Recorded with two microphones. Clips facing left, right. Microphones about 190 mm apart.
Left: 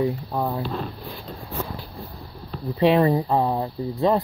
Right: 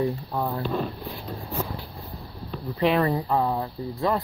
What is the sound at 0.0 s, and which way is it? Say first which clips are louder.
Speech: left 2 dB; 15° left (ahead or behind).